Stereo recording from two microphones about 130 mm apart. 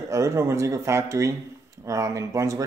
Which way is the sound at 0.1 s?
20° right (ahead or behind).